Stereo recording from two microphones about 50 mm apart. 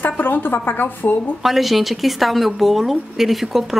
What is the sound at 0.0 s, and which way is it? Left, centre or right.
A woman's voice, left.